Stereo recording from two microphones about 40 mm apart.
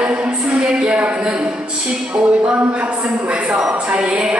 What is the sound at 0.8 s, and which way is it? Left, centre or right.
Speech, right.